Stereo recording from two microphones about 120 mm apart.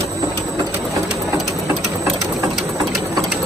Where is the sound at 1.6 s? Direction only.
25° right (ahead or behind).